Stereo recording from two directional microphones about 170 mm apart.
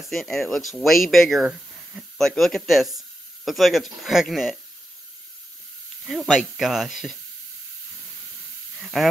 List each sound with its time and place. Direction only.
0.0 s speech: centre (ahead or behind)
6.0 s speech: centre (ahead or behind)
8.7 s speech: centre (ahead or behind)